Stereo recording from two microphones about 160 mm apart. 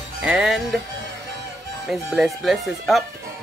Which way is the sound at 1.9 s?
Centre (ahead or behind).